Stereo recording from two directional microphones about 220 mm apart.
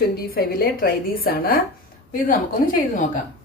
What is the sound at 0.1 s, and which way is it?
A woman's voice, 45° left (ahead or behind).